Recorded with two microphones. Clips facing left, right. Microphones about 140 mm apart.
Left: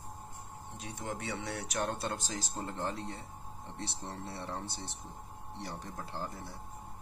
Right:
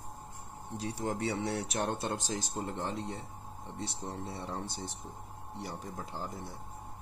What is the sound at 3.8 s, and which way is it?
Speech, 15° right (ahead or behind).